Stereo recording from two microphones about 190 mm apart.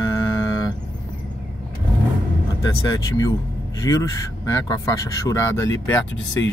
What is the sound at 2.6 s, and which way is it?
Speech, 20° left (ahead or behind).